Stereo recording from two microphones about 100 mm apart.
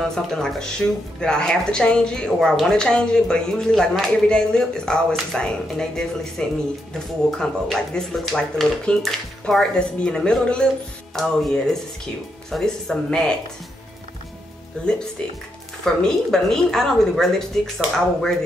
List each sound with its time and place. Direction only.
0.0 s speech: 5° left (ahead or behind)
15.8 s speech: 5° left (ahead or behind)